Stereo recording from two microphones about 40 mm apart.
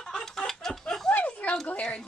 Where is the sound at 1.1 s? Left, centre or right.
Left.